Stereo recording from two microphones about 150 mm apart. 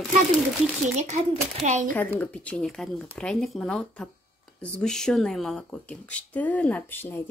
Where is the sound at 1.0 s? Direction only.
50° right (ahead or behind).